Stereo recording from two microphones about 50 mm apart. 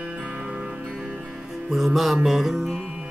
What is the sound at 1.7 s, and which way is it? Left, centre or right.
Music, centre.